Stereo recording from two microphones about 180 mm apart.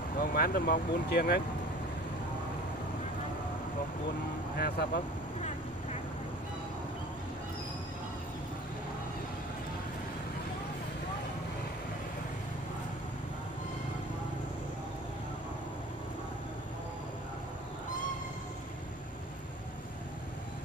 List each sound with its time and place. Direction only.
0.2 s speech: 55° left (ahead or behind)
4.6 s speech: 60° left (ahead or behind)